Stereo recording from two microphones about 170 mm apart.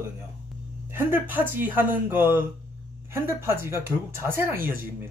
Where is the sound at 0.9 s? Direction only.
15° right (ahead or behind).